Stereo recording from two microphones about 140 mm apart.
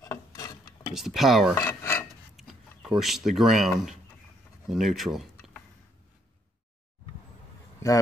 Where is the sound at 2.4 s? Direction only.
Centre (ahead or behind).